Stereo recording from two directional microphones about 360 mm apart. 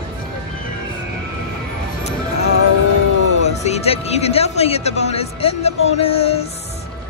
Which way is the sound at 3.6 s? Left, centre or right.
Centre.